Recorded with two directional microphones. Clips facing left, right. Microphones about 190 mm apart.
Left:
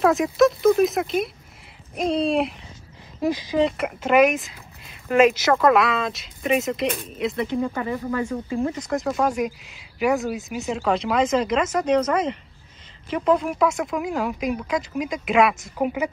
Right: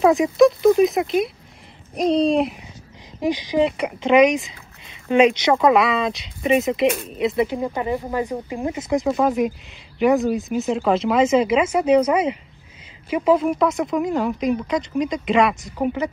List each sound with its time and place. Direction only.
0.0 s speech: centre (ahead or behind)
3.2 s speech: 15° right (ahead or behind)
3.6 s speech: centre (ahead or behind)
7.6 s speech: 15° right (ahead or behind)
8.7 s speech: centre (ahead or behind)